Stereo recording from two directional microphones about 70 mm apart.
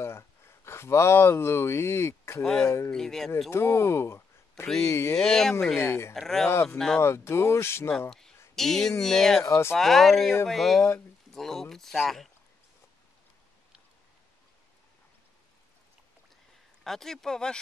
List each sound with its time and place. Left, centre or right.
0.0 s speech: left
2.4 s speech: centre
3.4 s speech: left
5.1 s speech: centre
5.8 s speech: left
6.1 s speech: centre
6.5 s speech: left
8.5 s speech: centre
9.4 s speech: left
9.8 s speech: centre
11.3 s a sound: centre
11.7 s speech: centre
16.8 s speech: centre